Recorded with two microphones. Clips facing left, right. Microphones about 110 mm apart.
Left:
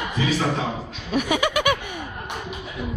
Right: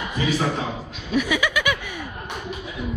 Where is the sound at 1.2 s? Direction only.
50° left (ahead or behind).